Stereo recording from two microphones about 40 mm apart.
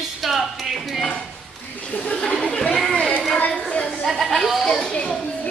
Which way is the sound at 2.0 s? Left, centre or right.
Left.